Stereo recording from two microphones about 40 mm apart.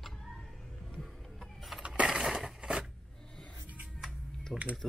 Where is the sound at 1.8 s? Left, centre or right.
Right.